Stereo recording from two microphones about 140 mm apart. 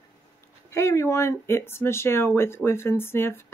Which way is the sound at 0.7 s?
20° left (ahead or behind).